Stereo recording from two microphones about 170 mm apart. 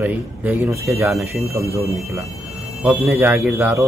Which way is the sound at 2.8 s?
15° right (ahead or behind).